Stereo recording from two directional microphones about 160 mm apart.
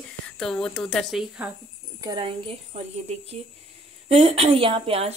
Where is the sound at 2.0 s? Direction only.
30° right (ahead or behind).